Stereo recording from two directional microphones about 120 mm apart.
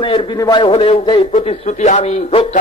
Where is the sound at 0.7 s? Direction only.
65° left (ahead or behind).